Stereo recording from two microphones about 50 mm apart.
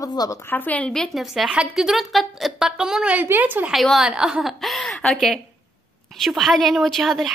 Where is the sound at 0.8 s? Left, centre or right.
Centre.